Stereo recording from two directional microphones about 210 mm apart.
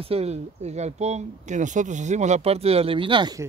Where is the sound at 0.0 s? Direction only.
30° right (ahead or behind).